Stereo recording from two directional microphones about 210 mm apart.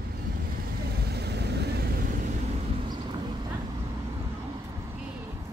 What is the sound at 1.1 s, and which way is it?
Vehicle, 50° right (ahead or behind).